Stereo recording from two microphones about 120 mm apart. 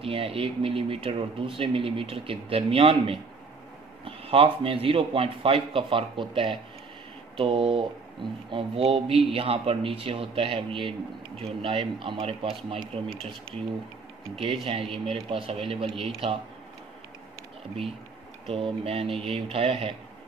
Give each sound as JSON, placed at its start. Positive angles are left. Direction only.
{"t": 0.0, "sound": "a man's voice", "side_deg": -50}
{"t": 13.0, "sound": "speech", "side_deg": 5}
{"t": 14.3, "sound": "a man's voice", "side_deg": -50}
{"t": 18.5, "sound": "a man's voice", "side_deg": -55}